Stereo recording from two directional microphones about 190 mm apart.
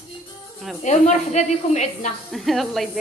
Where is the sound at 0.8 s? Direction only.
40° left (ahead or behind).